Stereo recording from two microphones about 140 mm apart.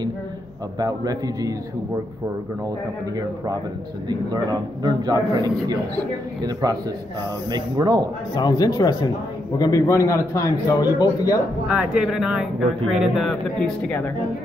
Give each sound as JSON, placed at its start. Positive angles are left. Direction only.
{"t": 0.7, "sound": "a man's voice", "side_deg": -25}
{"t": 4.1, "sound": "a man's voice", "side_deg": -30}
{"t": 8.4, "sound": "a man's voice", "side_deg": 30}
{"t": 11.6, "sound": "speech", "side_deg": -10}